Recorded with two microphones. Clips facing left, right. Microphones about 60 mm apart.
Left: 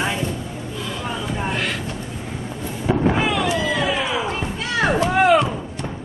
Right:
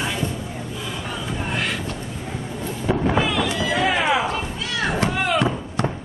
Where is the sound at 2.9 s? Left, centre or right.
Centre.